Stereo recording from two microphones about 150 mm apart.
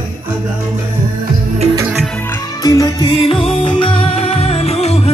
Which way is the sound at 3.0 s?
40° left (ahead or behind).